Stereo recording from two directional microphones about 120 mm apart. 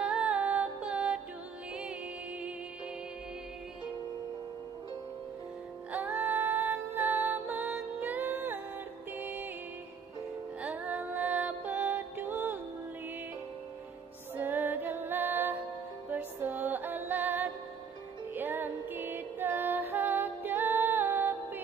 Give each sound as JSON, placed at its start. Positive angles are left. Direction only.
{"t": 0.0, "sound": "music", "side_deg": -5}
{"t": 5.9, "sound": "music", "side_deg": -10}
{"t": 10.6, "sound": "music", "side_deg": -15}
{"t": 14.3, "sound": "music", "side_deg": -15}